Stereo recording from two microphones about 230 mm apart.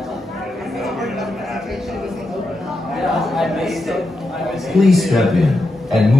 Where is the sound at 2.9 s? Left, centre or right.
Centre.